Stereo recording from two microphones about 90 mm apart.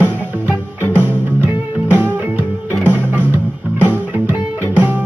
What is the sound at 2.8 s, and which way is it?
Music, 20° right (ahead or behind).